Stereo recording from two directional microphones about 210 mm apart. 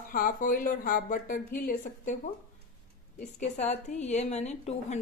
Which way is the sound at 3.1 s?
35° left (ahead or behind).